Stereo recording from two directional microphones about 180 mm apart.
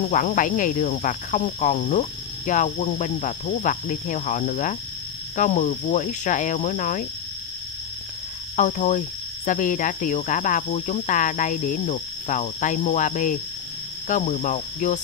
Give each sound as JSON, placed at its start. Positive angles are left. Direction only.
{"t": 0.1, "sound": "speech", "side_deg": 45}
{"t": 8.5, "sound": "speech", "side_deg": 45}